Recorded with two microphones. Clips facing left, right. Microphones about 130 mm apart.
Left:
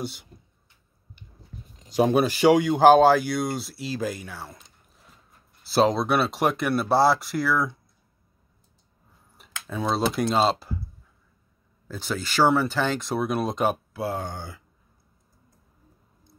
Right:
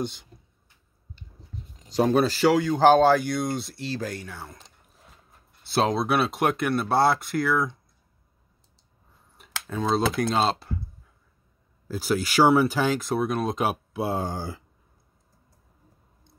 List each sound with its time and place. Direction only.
0.0 s speech: 5° left (ahead or behind)
1.9 s speech: 10° left (ahead or behind)
5.6 s speech: centre (ahead or behind)
9.7 s speech: 5° left (ahead or behind)
11.9 s speech: 5° right (ahead or behind)
13.9 s speech: 25° right (ahead or behind)